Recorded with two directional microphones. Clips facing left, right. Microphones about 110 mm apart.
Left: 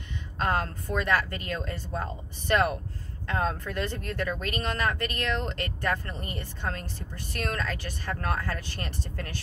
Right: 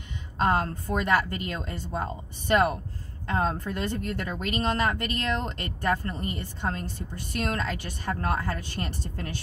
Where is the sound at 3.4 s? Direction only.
30° right (ahead or behind).